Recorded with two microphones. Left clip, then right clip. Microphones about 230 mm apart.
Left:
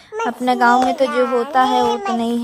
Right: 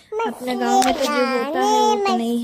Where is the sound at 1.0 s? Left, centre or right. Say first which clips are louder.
Left 2 dB; right.